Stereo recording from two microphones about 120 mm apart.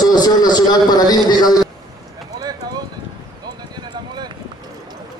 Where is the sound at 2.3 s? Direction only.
35° right (ahead or behind).